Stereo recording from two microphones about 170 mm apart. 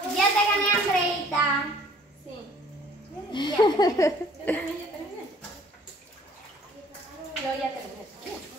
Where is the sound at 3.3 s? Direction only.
25° left (ahead or behind).